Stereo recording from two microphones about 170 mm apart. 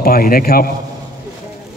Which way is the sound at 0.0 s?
60° left (ahead or behind).